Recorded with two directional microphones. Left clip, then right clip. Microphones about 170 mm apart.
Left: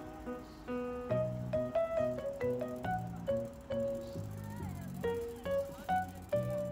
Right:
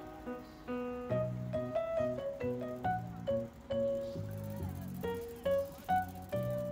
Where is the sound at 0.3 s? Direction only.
Centre (ahead or behind).